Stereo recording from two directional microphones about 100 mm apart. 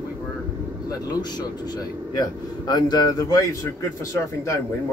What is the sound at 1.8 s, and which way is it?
A man's voice, 40° left (ahead or behind).